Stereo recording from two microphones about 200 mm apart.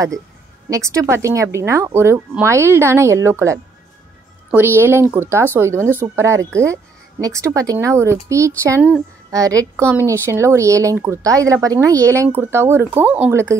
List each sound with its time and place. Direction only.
0.7 s speech: 15° right (ahead or behind)
4.8 s speech: 10° right (ahead or behind)